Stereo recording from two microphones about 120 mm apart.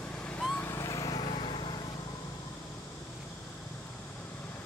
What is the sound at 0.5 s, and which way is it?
Vehicle, 20° left (ahead or behind).